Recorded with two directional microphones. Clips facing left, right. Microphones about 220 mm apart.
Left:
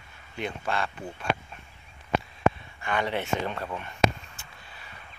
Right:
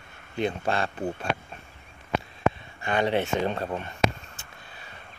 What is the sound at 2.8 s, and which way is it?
Speech, 25° right (ahead or behind).